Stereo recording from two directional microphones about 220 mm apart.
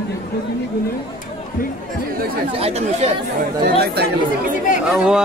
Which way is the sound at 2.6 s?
30° right (ahead or behind).